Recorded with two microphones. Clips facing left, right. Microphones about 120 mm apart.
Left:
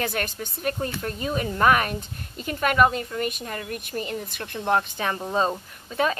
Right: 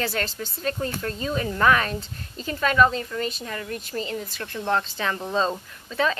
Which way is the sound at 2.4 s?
30° right (ahead or behind).